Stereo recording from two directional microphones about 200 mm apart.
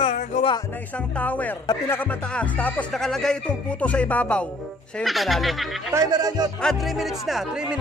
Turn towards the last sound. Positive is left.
turn(degrees=-5)  # may be behind; listen again after turning